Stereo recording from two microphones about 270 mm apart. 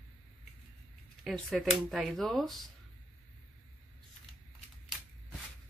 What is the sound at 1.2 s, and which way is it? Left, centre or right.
Speech, centre.